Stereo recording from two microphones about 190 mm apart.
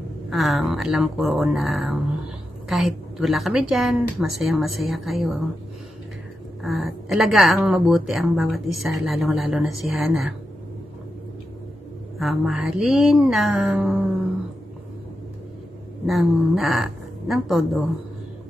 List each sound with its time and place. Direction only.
0.3 s a woman's voice: centre (ahead or behind)
6.6 s a woman's voice: centre (ahead or behind)
12.2 s a woman's voice: centre (ahead or behind)
16.1 s a woman's voice: centre (ahead or behind)